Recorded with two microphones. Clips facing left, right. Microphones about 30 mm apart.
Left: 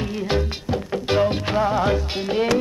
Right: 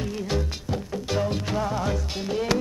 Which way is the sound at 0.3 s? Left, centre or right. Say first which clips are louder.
Left 7 dB; left.